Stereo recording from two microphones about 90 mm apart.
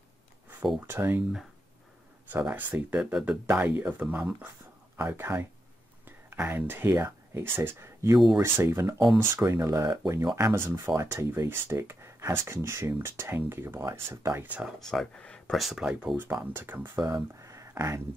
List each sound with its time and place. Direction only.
0.7 s speech: 25° right (ahead or behind)
2.3 s speech: 20° right (ahead or behind)
3.0 s speech: 10° right (ahead or behind); by 9.8 s 35° right (ahead or behind)
9.8 s speech: 45° right (ahead or behind); by 14.7 s 20° right (ahead or behind)
14.8 s speech: 5° left (ahead or behind)
15.6 s speech: 5° right (ahead or behind)
16.5 s speech: 25° right (ahead or behind)
17.4 s a sound: 35° right (ahead or behind)